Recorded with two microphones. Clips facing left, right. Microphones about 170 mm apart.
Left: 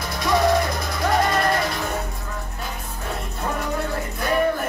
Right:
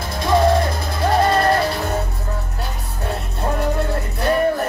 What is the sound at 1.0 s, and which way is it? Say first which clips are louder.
Music: right 4 dB; 35° right (ahead or behind).